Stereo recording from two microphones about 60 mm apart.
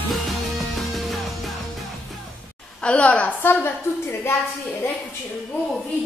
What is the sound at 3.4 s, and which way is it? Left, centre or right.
Speech, left.